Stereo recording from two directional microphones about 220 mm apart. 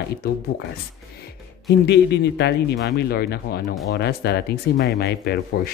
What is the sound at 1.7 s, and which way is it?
Speech, 50° left (ahead or behind).